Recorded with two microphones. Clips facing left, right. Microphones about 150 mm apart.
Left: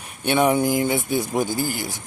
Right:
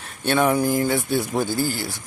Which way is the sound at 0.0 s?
15° left (ahead or behind).